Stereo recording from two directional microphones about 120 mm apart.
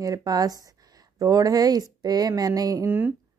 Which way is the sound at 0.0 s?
30° right (ahead or behind).